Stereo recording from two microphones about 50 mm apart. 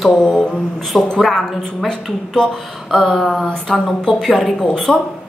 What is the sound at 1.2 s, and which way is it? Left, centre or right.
A woman's voice, centre.